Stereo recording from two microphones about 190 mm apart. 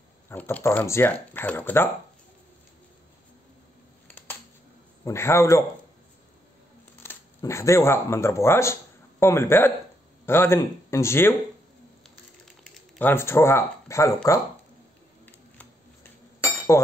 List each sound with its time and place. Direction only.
0.3 s speech: 10° left (ahead or behind)
5.0 s speech: 15° left (ahead or behind)
7.0 s speech: 10° left (ahead or behind)
12.7 s speech: 10° left (ahead or behind)
15.2 s a sound: 10° left (ahead or behind)
16.7 s speech: 15° left (ahead or behind)